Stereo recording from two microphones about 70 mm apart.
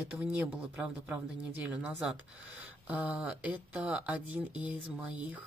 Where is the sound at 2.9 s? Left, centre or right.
Right.